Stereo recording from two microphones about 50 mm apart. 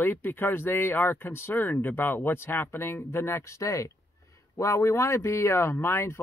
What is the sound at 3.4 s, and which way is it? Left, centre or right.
Speech, left.